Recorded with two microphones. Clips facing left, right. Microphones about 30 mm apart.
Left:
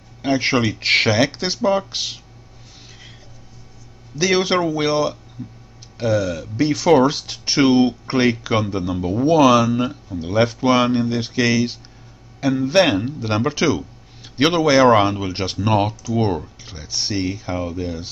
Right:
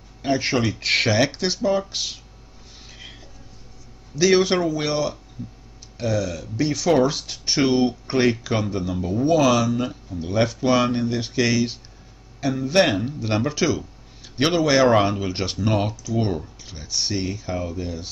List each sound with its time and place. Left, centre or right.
0.2 s speech: left
4.2 s speech: centre